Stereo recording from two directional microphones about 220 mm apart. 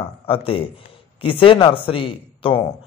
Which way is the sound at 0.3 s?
25° left (ahead or behind).